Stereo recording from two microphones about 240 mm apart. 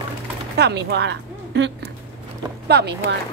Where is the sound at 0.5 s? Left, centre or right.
Right.